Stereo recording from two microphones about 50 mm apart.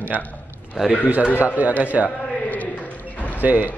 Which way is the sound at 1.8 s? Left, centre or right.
Right.